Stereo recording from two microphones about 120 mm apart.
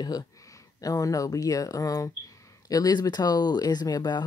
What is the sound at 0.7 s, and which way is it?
Speech, 30° left (ahead or behind).